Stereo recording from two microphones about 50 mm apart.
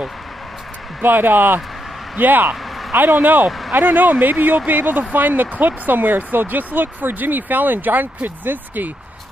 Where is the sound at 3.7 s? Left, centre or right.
Right.